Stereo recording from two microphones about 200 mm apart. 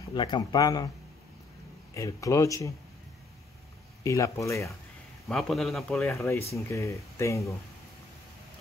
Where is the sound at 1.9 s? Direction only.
15° left (ahead or behind).